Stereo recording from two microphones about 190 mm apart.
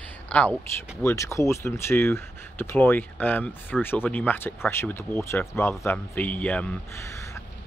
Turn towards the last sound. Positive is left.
turn(degrees=15)  # may be behind; listen again after turning